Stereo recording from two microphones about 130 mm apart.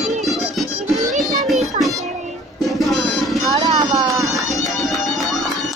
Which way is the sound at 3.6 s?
30° right (ahead or behind).